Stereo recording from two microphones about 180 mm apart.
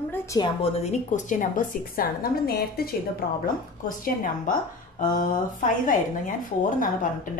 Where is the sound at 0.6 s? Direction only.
35° left (ahead or behind).